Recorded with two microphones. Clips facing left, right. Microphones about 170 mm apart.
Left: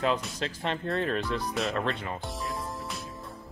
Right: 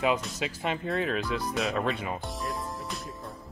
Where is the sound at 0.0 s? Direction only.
10° right (ahead or behind).